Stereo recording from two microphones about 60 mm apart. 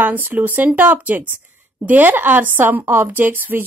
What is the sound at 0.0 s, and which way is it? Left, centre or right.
A woman's voice, right.